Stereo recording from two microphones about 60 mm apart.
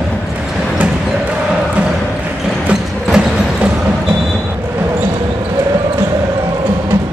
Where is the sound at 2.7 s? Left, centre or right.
Centre.